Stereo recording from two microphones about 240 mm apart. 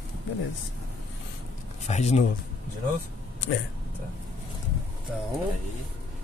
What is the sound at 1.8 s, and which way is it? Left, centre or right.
Speech, left.